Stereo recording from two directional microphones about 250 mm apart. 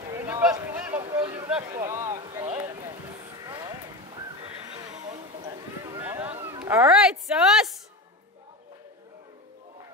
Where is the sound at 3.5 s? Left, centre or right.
Centre.